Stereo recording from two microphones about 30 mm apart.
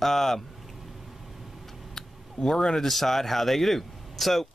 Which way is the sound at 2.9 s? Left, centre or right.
Centre.